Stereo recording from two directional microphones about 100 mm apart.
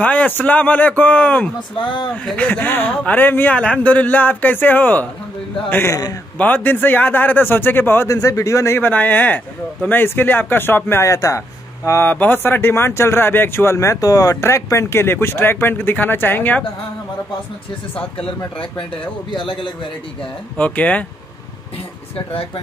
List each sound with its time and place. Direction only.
0.0 s a man's voice: 15° left (ahead or behind)
12.1 s a man's voice: 20° left (ahead or behind)
18.1 s speech: 65° left (ahead or behind)
19.3 s speech: 55° left (ahead or behind)
20.5 s a man's voice: 15° left (ahead or behind)